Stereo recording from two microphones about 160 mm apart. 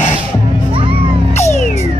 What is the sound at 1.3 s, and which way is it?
Music, 45° left (ahead or behind).